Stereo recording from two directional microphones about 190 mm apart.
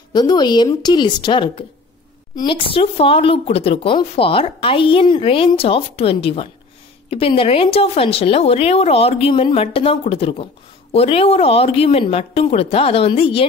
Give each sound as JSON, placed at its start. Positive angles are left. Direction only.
{"t": 0.1, "sound": "a woman's voice", "side_deg": 20}